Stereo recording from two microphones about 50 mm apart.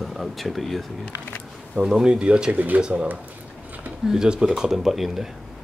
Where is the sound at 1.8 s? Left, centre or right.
Centre.